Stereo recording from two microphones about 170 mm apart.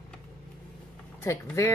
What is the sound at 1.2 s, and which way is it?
Speech, 15° left (ahead or behind).